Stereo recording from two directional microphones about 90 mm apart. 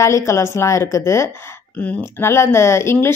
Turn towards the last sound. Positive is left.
turn(degrees=25)  # may be behind; listen again after turning